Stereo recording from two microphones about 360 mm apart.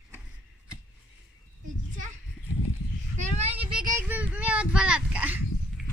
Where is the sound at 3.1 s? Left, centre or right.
Centre.